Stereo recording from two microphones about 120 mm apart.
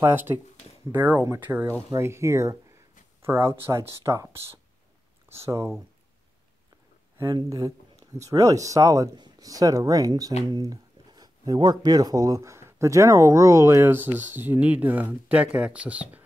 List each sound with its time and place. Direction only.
0.0 s speech: 20° right (ahead or behind)
7.2 s speech: 30° right (ahead or behind); by 16.3 s 10° right (ahead or behind)